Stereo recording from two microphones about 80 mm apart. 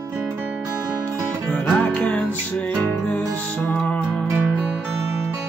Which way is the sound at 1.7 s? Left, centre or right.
Centre.